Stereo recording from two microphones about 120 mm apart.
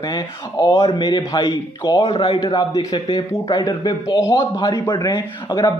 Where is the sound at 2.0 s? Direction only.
55° left (ahead or behind).